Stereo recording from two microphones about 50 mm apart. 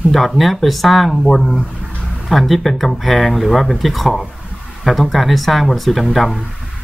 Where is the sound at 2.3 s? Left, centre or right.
Centre.